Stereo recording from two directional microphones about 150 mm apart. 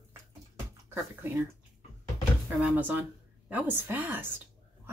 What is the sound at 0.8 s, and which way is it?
Speech, 15° right (ahead or behind).